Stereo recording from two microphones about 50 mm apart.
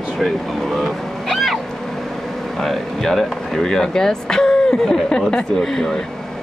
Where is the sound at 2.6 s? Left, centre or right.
Centre.